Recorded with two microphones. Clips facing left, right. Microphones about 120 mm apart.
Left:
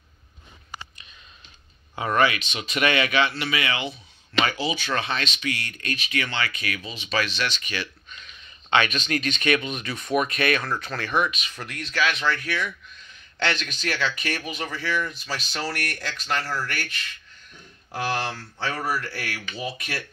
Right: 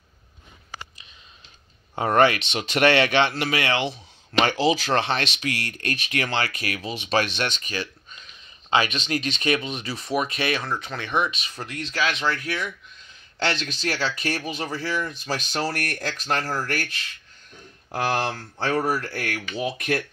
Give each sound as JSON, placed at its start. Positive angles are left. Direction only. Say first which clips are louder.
{"t": 2.0, "sound": "speech", "louder": "right 3 dB", "side_deg": -50}
{"t": 5.9, "sound": "speech", "louder": "right 2 dB", "side_deg": -55}
{"t": 6.8, "sound": "speech", "louder": "right 5 dB", "side_deg": -65}